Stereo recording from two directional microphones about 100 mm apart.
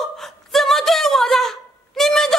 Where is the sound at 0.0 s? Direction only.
Centre (ahead or behind).